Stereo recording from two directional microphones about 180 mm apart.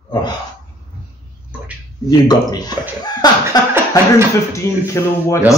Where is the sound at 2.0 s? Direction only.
20° left (ahead or behind).